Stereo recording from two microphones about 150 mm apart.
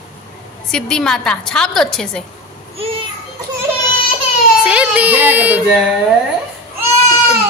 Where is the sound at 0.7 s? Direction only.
5° left (ahead or behind).